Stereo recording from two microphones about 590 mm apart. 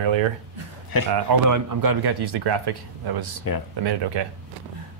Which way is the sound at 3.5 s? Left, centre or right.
Left.